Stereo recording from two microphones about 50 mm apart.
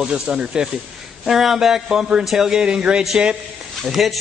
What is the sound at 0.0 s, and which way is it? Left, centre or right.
Speech, centre.